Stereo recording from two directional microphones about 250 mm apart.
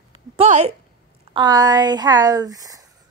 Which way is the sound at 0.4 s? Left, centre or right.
Right.